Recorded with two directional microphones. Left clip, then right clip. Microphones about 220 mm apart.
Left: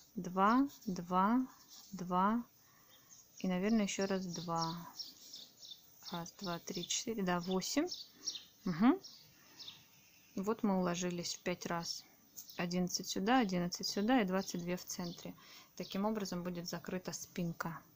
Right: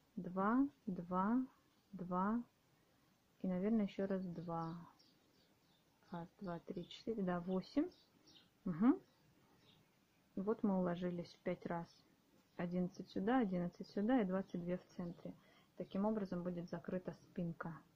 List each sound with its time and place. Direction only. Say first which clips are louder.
0.2 s speech: left 7 dB; 20° left (ahead or behind)
6.0 s speech: left 6 dB; 25° left (ahead or behind)
10.3 s speech: left 4 dB; 20° left (ahead or behind)